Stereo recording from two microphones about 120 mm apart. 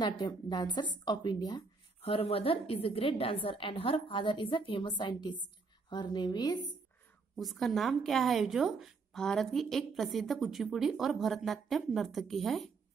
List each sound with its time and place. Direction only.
0.0 s a woman's voice: 35° left (ahead or behind)
2.0 s a woman's voice: 55° left (ahead or behind); by 6.7 s 35° left (ahead or behind)
7.3 s a woman's voice: centre (ahead or behind)